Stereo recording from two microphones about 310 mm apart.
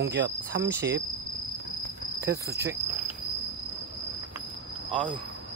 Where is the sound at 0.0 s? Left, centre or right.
Right.